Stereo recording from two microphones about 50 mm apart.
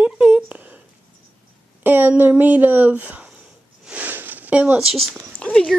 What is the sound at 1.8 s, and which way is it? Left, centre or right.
Speech, right.